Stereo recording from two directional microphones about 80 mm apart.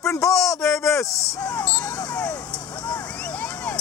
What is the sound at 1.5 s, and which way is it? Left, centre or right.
Vehicle, left.